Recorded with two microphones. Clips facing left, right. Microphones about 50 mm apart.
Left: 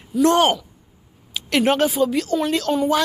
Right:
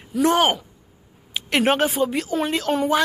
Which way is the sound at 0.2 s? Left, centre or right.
Centre.